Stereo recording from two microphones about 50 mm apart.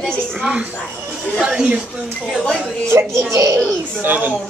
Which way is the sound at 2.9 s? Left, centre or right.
Right.